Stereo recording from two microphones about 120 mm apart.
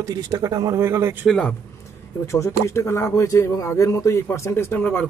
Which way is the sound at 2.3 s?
25° left (ahead or behind).